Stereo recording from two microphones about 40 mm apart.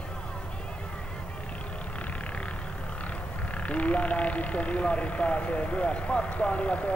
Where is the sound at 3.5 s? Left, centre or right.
Left.